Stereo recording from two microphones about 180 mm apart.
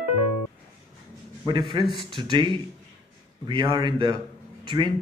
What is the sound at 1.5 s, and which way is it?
Speech, 25° right (ahead or behind).